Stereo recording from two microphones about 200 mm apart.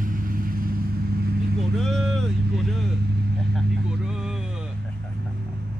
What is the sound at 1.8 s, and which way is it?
Vehicle, centre (ahead or behind).